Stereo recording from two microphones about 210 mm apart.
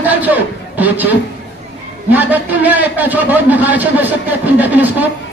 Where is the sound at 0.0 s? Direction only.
10° right (ahead or behind).